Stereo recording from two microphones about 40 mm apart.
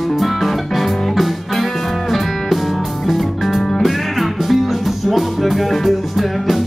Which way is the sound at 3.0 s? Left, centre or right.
Centre.